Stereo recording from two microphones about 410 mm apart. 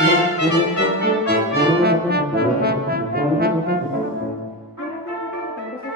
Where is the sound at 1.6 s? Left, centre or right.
Right.